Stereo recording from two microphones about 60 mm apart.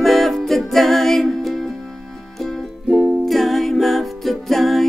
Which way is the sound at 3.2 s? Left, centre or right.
Centre.